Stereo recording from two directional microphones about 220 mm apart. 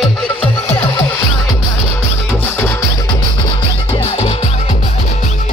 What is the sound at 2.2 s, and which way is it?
Music, 10° left (ahead or behind).